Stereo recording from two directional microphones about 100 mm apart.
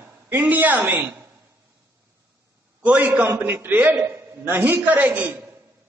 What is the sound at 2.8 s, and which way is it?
A man's voice, 15° right (ahead or behind).